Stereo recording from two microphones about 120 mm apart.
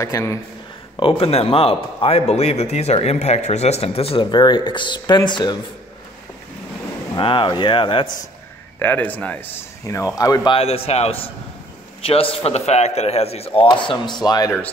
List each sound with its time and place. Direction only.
0.0 s speech: 25° left (ahead or behind)
0.9 s a man's voice: 50° left (ahead or behind)
7.2 s a man's voice: 45° left (ahead or behind)
8.7 s a man's voice: 15° left (ahead or behind)
9.8 s speech: 25° left (ahead or behind)
10.5 s speech: 55° left (ahead or behind)
13.7 s speech: 40° left (ahead or behind)